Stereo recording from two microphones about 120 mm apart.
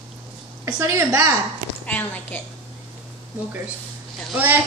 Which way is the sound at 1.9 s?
15° left (ahead or behind).